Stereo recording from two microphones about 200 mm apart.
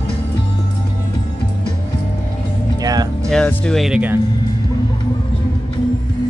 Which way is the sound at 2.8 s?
20° right (ahead or behind).